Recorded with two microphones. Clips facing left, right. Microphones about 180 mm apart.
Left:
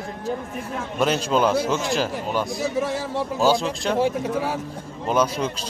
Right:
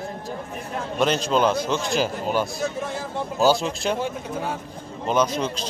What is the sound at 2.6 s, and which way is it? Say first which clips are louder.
Speech: left 3 dB; 85° left.